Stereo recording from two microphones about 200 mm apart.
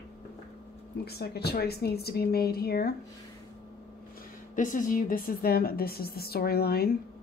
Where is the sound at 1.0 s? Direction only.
55° left (ahead or behind).